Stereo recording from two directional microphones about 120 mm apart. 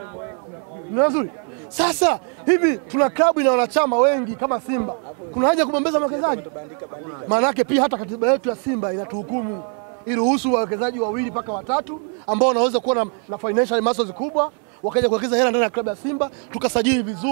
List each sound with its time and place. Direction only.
0.9 s speech: 15° right (ahead or behind)
10.0 s speech: 15° right (ahead or behind)